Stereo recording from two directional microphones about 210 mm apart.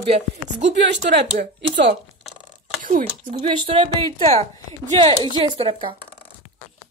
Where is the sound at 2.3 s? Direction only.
Centre (ahead or behind).